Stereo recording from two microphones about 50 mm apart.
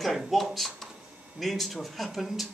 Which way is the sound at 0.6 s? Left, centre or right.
Centre.